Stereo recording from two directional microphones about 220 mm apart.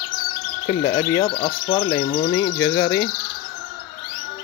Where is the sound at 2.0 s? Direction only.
35° left (ahead or behind).